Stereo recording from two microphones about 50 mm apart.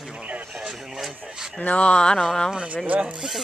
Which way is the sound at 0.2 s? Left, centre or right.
Right.